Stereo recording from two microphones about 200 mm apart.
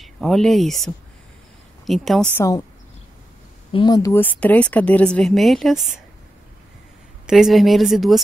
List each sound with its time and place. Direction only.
0.0 s a woman's voice: centre (ahead or behind)
2.3 s speech: 15° left (ahead or behind)
3.7 s speech: 20° left (ahead or behind); by 5.8 s centre (ahead or behind)
7.2 s a woman's voice: centre (ahead or behind)